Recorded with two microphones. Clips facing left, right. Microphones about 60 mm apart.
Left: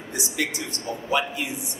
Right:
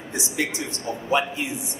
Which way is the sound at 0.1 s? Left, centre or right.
Right.